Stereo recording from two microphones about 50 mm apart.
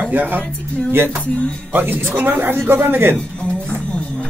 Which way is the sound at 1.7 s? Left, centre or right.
Right.